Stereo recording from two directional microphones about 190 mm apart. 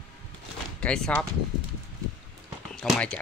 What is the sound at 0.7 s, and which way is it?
Speech, 5° left (ahead or behind).